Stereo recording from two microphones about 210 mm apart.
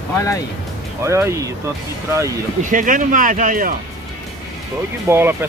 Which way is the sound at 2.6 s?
40° right (ahead or behind).